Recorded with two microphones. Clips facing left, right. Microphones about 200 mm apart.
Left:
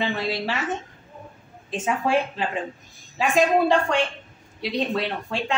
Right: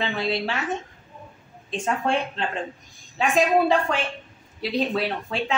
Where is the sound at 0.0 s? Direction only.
Centre (ahead or behind).